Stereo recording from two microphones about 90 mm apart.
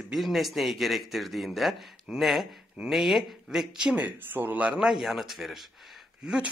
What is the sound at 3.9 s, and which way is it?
Speech, 20° right (ahead or behind).